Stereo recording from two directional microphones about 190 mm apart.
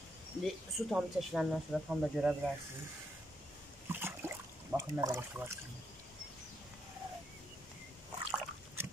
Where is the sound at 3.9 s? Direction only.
10° right (ahead or behind).